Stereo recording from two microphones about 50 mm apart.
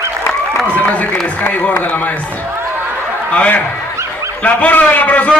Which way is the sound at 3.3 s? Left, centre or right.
Left.